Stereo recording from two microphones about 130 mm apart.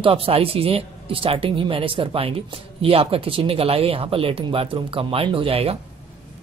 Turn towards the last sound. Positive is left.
turn(degrees=-45)  # may be behind; listen again after turning